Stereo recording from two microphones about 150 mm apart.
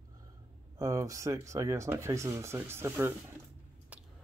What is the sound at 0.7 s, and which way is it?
Speech, 20° right (ahead or behind).